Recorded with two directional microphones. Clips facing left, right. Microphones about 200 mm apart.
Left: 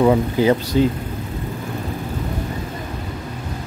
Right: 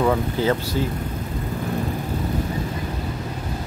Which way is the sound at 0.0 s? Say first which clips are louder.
Left 5 dB; 15° left (ahead or behind).